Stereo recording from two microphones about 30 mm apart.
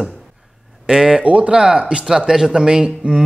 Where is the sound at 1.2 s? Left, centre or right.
Right.